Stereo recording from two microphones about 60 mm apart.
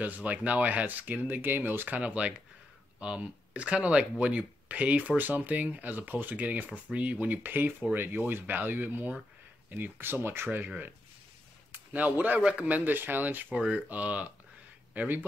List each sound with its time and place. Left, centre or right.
0.0 s speech: right
11.7 s speech: right
12.4 s a man's voice: centre
12.6 s speech: right